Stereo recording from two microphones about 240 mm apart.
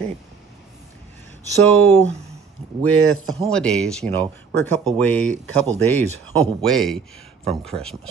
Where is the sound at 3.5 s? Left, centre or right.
Centre.